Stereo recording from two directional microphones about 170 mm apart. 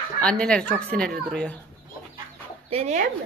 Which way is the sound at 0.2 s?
5° left (ahead or behind).